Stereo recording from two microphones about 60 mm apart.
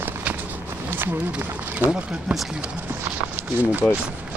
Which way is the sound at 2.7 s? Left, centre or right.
Right.